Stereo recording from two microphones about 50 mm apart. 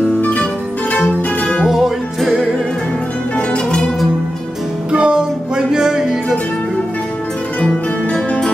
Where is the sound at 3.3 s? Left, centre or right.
Centre.